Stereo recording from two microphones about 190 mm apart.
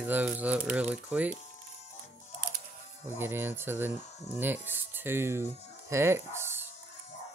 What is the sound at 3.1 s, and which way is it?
Speech, 10° right (ahead or behind).